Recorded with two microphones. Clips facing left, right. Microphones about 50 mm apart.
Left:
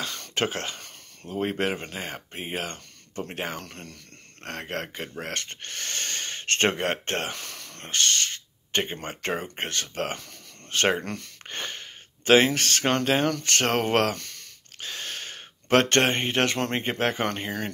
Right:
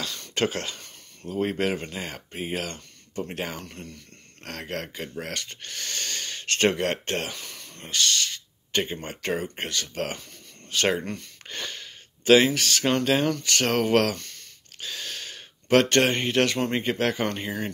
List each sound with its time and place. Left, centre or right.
0.3 s speech: left
3.6 s speech: left
4.4 s speech: left
7.4 s a sound: left
7.9 s speech: left
14.8 s a sound: left
16.7 s speech: left